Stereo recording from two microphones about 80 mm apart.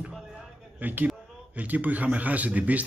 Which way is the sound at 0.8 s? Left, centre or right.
Right.